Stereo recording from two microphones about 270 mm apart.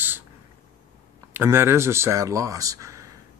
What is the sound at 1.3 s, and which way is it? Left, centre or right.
A man's voice, centre.